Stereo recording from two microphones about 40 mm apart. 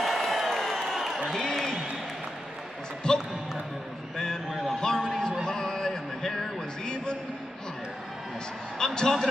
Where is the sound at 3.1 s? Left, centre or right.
Centre.